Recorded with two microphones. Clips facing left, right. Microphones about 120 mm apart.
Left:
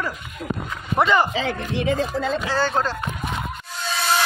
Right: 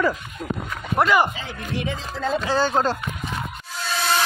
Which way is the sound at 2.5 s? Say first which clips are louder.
Right 4 dB; 15° right (ahead or behind).